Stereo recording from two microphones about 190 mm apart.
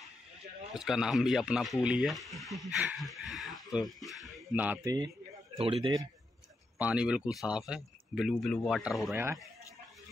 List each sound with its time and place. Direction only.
0.7 s speech: 5° right (ahead or behind)
5.6 s a man's voice: 30° right (ahead or behind)
6.8 s speech: 5° right (ahead or behind)
9.1 s speech: 10° right (ahead or behind)